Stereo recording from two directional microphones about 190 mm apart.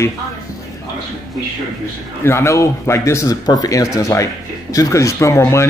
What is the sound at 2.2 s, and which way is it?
Speech, 15° left (ahead or behind).